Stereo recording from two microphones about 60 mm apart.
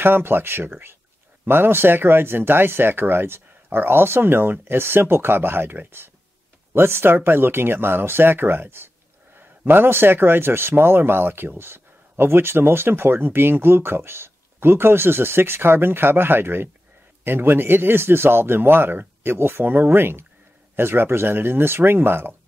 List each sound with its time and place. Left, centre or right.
0.0 s speech: right